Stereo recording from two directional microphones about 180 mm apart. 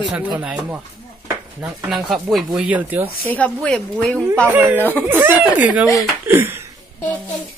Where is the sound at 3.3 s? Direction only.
5° left (ahead or behind).